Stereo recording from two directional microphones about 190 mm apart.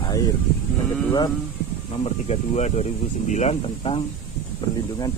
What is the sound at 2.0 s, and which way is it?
Speech, 35° left (ahead or behind).